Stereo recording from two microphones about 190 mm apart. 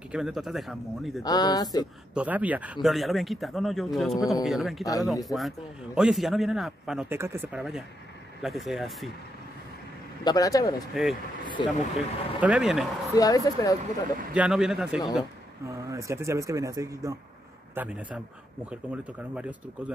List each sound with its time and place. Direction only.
0.1 s speech: centre (ahead or behind)
1.2 s speech: 20° left (ahead or behind)
2.1 s speech: 10° right (ahead or behind)
7.2 s speech: 15° right (ahead or behind)
7.4 s speech: centre (ahead or behind)
10.2 s speech: 20° left (ahead or behind)
10.9 s speech: centre (ahead or behind)
11.4 s speech: 25° left (ahead or behind)
12.4 s speech: 5° right (ahead or behind)
13.1 s speech: 20° left (ahead or behind)
14.3 s speech: 5° right (ahead or behind)
15.6 s speech: 15° right (ahead or behind)
17.7 s speech: 5° right (ahead or behind)